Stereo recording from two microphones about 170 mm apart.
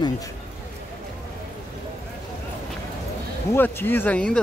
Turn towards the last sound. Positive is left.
turn(degrees=5)  # may be behind; listen again after turning